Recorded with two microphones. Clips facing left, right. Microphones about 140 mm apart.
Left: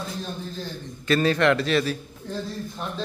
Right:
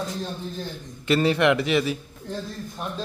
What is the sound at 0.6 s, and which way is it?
Speech, 20° right (ahead or behind).